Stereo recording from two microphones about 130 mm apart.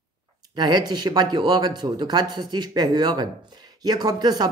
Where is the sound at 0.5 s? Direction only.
30° right (ahead or behind).